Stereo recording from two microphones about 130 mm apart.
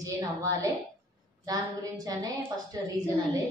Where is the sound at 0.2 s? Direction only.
25° right (ahead or behind).